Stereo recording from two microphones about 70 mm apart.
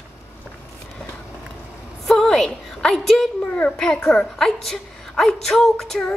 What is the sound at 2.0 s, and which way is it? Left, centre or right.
A woman's voice, centre.